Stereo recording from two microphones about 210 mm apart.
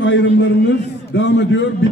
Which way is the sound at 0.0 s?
60° left (ahead or behind).